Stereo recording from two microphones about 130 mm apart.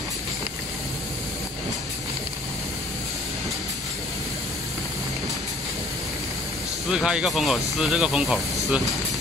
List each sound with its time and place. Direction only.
6.9 s speech: 5° right (ahead or behind)